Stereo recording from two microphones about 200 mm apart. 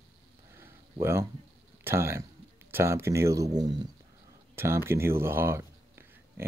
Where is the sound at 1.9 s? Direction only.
15° right (ahead or behind).